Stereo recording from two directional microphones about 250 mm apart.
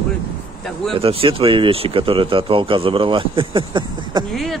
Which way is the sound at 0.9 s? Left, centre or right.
Right.